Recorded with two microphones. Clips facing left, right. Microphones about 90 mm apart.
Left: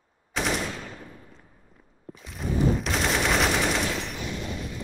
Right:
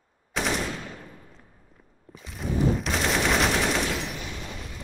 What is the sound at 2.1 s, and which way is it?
Machine gun, centre (ahead or behind).